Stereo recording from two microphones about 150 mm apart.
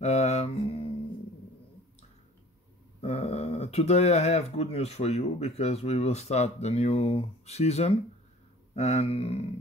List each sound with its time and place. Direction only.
0.0 s mantra: 45° left (ahead or behind)
3.0 s speech: 45° left (ahead or behind)